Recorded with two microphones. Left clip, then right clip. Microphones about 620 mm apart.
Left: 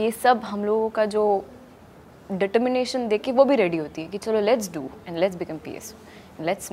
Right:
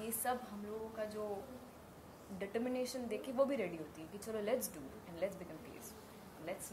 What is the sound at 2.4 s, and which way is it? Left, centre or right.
A woman's voice, left.